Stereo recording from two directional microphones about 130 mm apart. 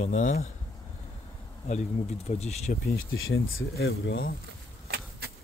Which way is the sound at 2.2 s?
55° left (ahead or behind).